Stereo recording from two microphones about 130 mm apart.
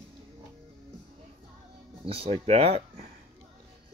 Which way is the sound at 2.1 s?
50° right (ahead or behind).